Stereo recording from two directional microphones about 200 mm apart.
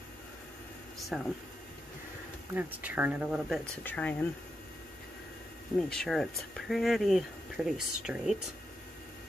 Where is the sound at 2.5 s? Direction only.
10° right (ahead or behind); by 4.3 s 10° left (ahead or behind).